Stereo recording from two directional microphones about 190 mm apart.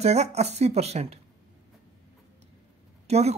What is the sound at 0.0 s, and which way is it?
Speech, 35° right (ahead or behind).